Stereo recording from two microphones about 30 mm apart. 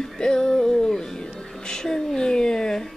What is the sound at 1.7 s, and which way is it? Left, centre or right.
A woman's voice, centre.